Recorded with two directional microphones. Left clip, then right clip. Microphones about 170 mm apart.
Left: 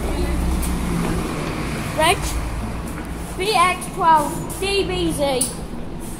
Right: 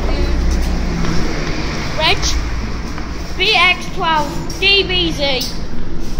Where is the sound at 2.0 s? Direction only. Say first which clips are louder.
Right 2 dB; 35° left (ahead or behind).